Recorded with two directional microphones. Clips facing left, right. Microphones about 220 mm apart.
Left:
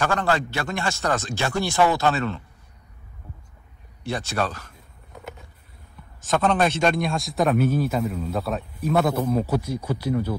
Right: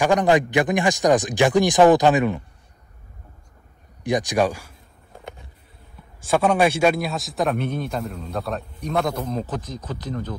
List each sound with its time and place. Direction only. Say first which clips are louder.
0.0 s speech: right 6 dB; 15° right (ahead or behind)
4.0 s speech: right 6 dB; 15° right (ahead or behind)
6.2 s a man's voice: right 3 dB; 10° right (ahead or behind); by 10.3 s 10° left (ahead or behind)